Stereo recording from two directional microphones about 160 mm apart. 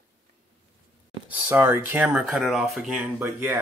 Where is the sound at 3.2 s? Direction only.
20° right (ahead or behind).